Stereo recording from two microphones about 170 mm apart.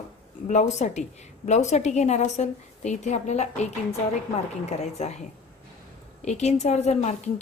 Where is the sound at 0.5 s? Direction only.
40° left (ahead or behind).